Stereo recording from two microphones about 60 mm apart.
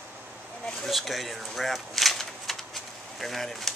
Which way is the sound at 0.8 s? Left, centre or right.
Centre.